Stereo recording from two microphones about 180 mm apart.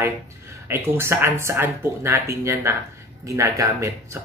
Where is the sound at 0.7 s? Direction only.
15° right (ahead or behind).